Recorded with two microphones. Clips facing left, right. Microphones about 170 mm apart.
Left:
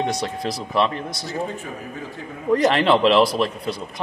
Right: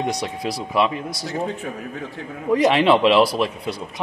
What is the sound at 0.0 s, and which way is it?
Speech, 10° right (ahead or behind).